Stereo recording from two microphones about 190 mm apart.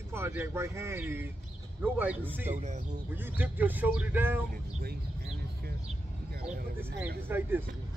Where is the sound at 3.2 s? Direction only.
10° right (ahead or behind).